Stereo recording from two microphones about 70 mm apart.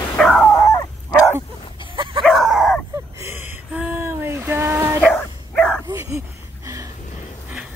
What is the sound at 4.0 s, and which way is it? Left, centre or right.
Dog, right.